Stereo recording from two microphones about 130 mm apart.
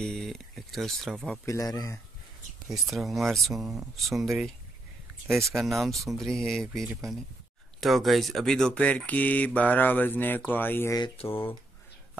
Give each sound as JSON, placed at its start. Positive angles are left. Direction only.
{"t": 0.0, "sound": "speech", "side_deg": 5}
{"t": 1.4, "sound": "speech", "side_deg": 25}
{"t": 2.7, "sound": "speech", "side_deg": 0}